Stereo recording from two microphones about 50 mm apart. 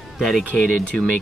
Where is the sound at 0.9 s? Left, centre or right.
Centre.